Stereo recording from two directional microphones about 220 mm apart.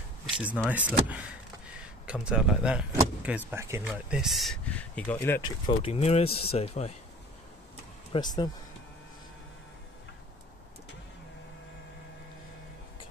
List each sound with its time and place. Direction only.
0.7 s speech: 5° right (ahead or behind); by 5.4 s 10° left (ahead or behind)
5.7 s speech: 25° left (ahead or behind)
8.1 s speech: 20° left (ahead or behind)